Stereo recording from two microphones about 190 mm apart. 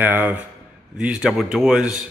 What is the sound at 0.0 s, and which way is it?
A man's voice, 10° right (ahead or behind).